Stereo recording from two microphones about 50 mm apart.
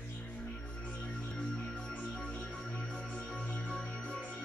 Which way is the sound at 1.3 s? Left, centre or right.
Centre.